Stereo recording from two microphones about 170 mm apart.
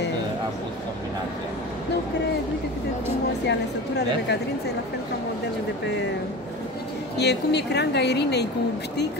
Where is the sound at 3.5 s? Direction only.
80° left.